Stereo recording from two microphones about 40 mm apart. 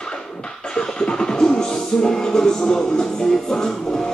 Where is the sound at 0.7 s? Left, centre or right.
Centre.